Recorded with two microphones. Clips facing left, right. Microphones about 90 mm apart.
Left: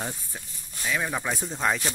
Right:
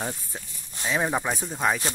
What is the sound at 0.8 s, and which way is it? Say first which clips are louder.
Speech: right 3 dB; 25° right (ahead or behind).